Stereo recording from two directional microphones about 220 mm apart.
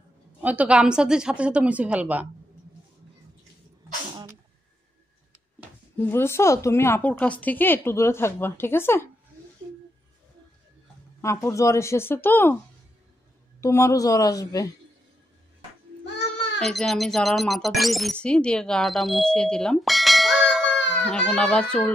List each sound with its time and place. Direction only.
0.4 s a woman's voice: 5° right (ahead or behind)
5.9 s speech: 10° left (ahead or behind)
11.1 s speech: 15° left (ahead or behind)
13.6 s speech: 15° left (ahead or behind)
16.5 s speech: centre (ahead or behind)